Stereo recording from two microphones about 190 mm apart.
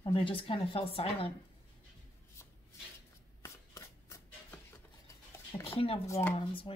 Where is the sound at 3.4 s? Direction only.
15° left (ahead or behind).